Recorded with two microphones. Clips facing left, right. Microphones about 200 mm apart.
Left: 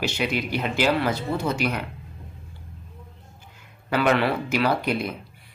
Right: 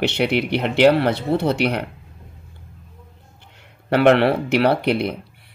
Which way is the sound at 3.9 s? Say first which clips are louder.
Right 7 dB; 65° right (ahead or behind).